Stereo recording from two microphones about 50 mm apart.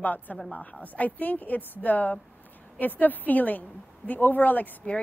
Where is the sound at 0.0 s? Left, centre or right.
Left.